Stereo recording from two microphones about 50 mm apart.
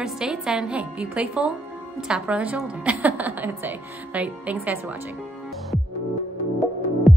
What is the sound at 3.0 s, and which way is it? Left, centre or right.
Speech, right.